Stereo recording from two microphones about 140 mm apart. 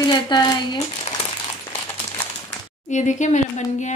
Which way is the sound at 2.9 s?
60° left (ahead or behind).